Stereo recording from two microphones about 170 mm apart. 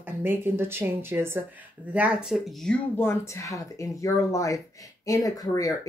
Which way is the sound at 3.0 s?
15° left (ahead or behind).